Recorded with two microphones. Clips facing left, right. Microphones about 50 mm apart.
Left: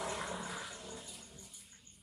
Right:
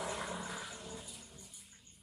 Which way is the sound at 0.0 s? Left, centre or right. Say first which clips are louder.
Even; centre.